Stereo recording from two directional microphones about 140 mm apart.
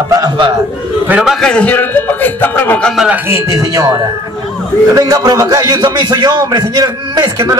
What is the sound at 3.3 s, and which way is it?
A man's voice, 25° right (ahead or behind).